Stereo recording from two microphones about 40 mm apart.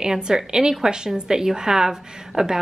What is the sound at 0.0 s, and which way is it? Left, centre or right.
A woman's voice, centre.